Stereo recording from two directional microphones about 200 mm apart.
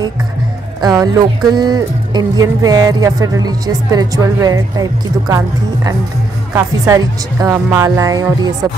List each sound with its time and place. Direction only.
0.7 s speech: 20° right (ahead or behind)
6.5 s speech: 15° right (ahead or behind)